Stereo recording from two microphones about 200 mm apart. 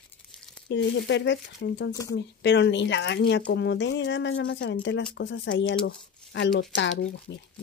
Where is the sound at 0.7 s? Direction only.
65° left (ahead or behind).